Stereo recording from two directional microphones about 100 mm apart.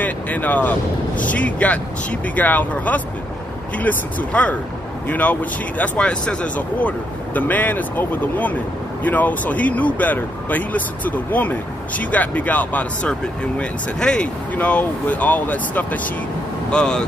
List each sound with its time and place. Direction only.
0.0 s speech: 15° left (ahead or behind)